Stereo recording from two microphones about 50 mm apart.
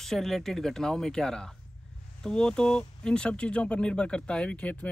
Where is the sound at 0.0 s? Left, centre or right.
Centre.